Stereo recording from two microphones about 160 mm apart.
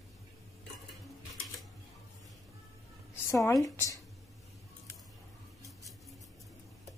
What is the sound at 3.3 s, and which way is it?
Speech, 20° left (ahead or behind).